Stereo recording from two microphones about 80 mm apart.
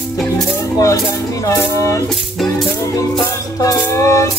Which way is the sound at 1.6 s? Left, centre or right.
Left.